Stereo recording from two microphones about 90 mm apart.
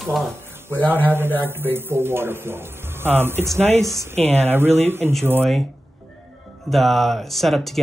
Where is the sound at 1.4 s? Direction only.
25° right (ahead or behind).